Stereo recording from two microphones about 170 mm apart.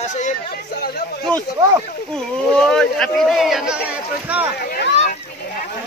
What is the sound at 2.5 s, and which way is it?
Speech, 5° left (ahead or behind).